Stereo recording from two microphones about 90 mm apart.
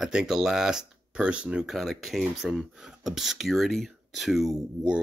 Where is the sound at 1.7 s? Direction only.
Centre (ahead or behind).